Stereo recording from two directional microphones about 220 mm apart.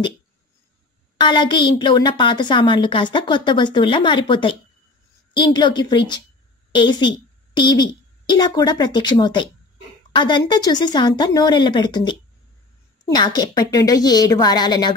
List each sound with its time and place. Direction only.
1.1 s a woman's voice: 20° left (ahead or behind)